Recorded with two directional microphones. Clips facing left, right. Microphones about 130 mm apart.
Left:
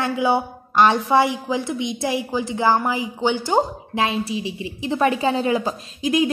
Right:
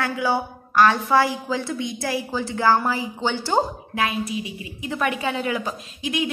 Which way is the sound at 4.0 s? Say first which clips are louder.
Left 2 dB; 30° left (ahead or behind).